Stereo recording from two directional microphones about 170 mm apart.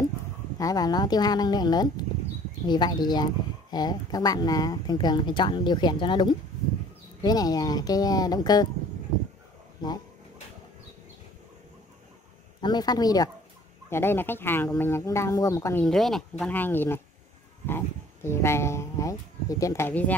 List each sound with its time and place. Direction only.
0.6 s speech: 20° left (ahead or behind)
12.6 s speech: 25° left (ahead or behind)
15.8 s speech: centre (ahead or behind)